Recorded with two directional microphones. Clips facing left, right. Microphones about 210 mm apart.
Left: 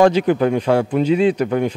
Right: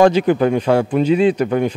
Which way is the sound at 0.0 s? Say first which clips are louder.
Right 1 dB; 15° right (ahead or behind).